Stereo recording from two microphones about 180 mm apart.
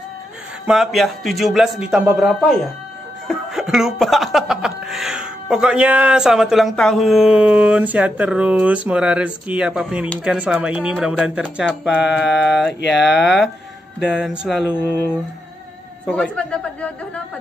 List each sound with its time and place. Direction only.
0.7 s speech: centre (ahead or behind)
14.7 s a sound: 10° left (ahead or behind)
16.1 s speech: 5° left (ahead or behind)